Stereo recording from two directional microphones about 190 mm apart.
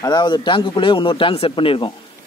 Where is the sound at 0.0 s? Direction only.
20° left (ahead or behind).